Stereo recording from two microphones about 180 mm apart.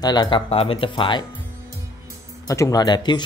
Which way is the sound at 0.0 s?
25° left (ahead or behind).